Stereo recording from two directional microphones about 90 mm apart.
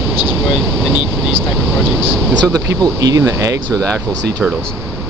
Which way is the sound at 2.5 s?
45° right (ahead or behind).